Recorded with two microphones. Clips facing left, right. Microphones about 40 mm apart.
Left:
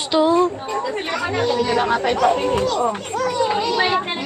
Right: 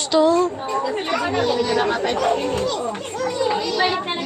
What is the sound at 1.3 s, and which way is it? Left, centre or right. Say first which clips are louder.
A child's voice: left 2 dB; centre.